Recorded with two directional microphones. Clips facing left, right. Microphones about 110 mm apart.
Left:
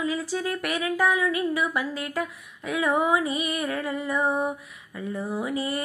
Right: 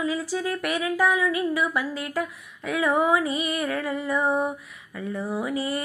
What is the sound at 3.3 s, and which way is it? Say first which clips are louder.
Music: right 1 dB; 30° right (ahead or behind).